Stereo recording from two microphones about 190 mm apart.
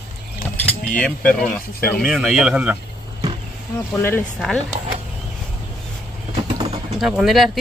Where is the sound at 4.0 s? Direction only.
10° left (ahead or behind).